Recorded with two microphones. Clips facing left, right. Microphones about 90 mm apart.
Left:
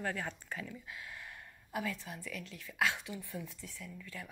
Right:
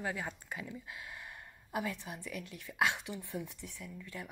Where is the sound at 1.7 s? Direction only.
20° right (ahead or behind).